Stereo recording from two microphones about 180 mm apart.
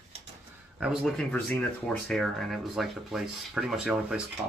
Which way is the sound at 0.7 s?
Centre (ahead or behind).